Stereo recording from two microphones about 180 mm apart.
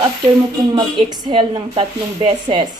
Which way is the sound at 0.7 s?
25° right (ahead or behind).